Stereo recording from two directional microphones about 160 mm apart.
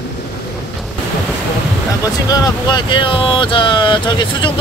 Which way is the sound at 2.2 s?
25° left (ahead or behind).